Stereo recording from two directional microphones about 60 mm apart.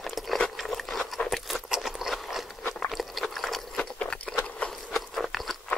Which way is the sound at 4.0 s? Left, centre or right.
Centre.